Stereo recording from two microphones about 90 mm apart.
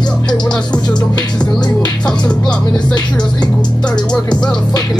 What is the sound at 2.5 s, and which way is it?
Music, 50° left (ahead or behind).